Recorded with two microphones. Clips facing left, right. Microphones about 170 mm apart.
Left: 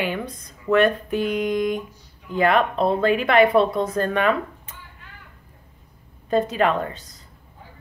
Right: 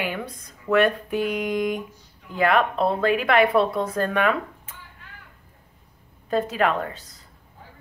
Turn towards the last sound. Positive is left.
turn(degrees=-5)  # may be behind; listen again after turning